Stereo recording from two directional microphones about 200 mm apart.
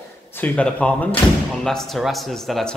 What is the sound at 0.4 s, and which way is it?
Speech, 5° left (ahead or behind).